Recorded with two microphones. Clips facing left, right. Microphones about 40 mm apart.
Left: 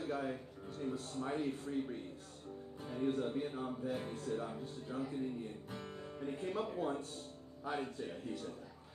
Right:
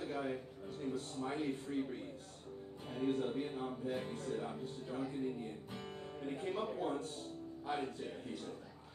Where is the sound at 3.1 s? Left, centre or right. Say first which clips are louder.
Even; centre.